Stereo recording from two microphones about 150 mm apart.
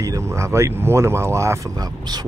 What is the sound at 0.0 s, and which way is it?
Speech, 20° right (ahead or behind).